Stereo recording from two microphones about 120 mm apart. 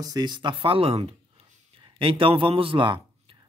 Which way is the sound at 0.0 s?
35° right (ahead or behind).